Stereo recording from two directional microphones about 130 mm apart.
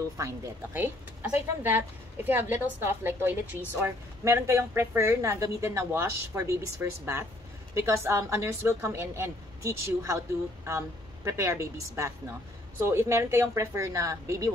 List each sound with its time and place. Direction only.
0.7 s speech: 15° right (ahead or behind)